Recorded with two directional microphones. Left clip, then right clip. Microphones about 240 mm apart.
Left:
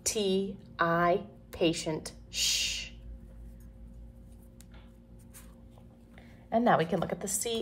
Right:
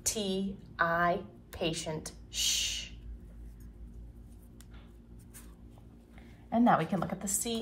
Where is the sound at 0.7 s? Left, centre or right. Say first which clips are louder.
Left 2 dB; left.